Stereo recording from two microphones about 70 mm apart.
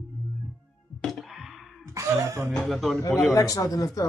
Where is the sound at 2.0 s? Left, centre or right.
Right.